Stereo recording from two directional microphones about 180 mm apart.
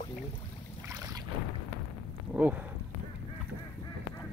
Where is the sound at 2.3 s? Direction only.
5° right (ahead or behind).